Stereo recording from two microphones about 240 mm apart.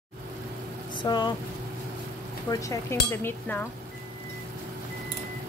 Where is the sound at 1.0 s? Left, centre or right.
Centre.